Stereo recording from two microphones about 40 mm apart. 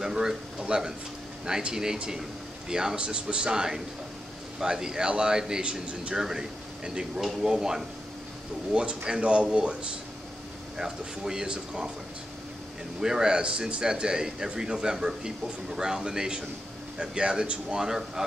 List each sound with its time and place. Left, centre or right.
0.0 s speech: centre
3.0 s speech: right
10.8 s speech: centre
13.0 s speech: centre